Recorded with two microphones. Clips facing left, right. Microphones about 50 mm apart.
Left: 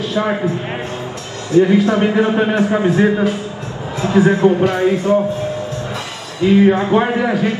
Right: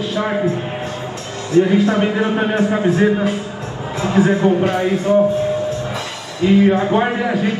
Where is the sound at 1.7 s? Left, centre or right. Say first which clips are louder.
Left 2 dB; left.